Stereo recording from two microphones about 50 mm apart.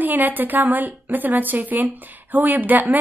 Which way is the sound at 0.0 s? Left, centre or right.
Right.